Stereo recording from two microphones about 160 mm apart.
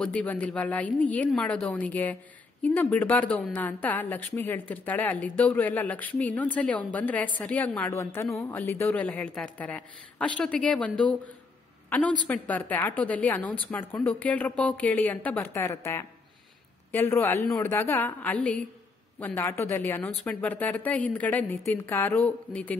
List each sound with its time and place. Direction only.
0.0 s a woman's voice: 10° left (ahead or behind)